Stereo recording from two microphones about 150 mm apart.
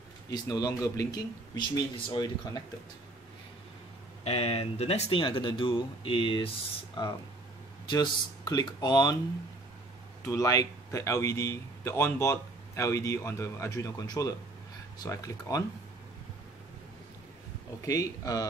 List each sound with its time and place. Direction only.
0.3 s a man's voice: 25° left (ahead or behind)
4.2 s speech: 40° left (ahead or behind)
7.9 s a man's voice: 30° left (ahead or behind)
10.2 s a man's voice: 20° left (ahead or behind)
17.8 s a man's voice: 25° left (ahead or behind)